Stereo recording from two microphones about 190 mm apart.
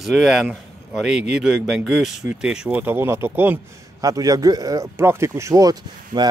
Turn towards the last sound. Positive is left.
turn(degrees=-20)  # may be behind; listen again after turning